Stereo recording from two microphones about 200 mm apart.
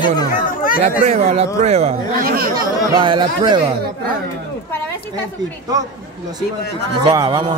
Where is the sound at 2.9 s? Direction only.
25° right (ahead or behind).